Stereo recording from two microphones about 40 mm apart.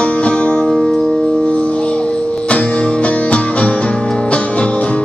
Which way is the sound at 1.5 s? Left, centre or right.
Left.